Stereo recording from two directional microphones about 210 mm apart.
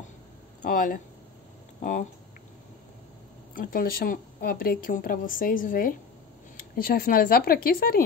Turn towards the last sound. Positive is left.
turn(degrees=45)  # may be behind; listen again after turning